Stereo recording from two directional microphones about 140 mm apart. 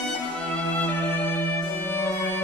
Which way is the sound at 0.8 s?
15° left (ahead or behind).